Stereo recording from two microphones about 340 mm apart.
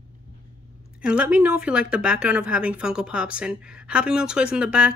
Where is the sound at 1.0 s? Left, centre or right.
Centre.